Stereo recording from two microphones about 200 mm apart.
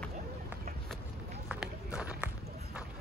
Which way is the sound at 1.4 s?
5° right (ahead or behind).